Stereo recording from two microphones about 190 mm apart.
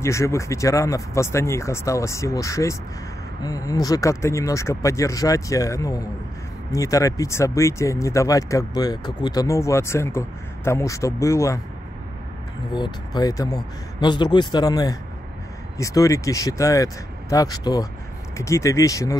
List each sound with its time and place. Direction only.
0.0 s speech: 15° left (ahead or behind)
12.7 s speech: 20° left (ahead or behind)